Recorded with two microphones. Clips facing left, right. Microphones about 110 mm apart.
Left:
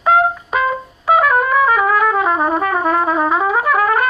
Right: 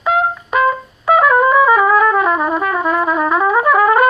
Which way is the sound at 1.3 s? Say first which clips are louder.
Right 3 dB; centre (ahead or behind).